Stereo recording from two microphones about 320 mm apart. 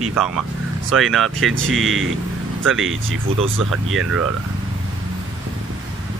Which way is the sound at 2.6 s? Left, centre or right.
Right.